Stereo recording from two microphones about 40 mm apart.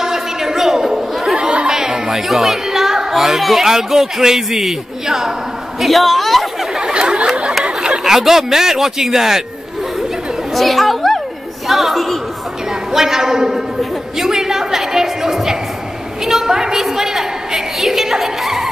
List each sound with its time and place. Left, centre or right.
0.0 s a sound: centre
1.3 s chatter: right
1.7 s chatter: centre
2.2 s speech: centre
5.8 s a woman's voice: centre
6.8 s a sound: right
7.6 s speech: right
10.5 s a woman's voice: centre
14.1 s music: centre
16.3 s a sound: centre